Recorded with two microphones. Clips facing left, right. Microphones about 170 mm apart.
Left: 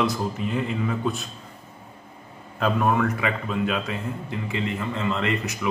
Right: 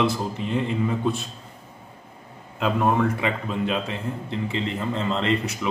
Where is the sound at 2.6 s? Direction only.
25° right (ahead or behind).